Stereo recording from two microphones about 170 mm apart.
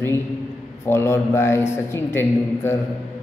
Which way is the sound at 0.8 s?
15° left (ahead or behind).